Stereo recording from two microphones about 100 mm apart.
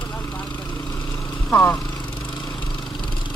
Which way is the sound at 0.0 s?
25° left (ahead or behind).